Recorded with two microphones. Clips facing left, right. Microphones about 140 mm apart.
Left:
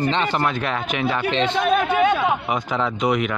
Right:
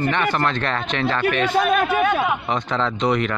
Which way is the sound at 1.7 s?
25° left (ahead or behind).